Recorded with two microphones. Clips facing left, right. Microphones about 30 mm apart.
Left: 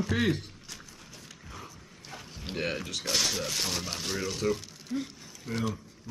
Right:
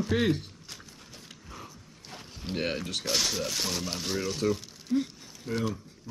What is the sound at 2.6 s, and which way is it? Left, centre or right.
Speech, right.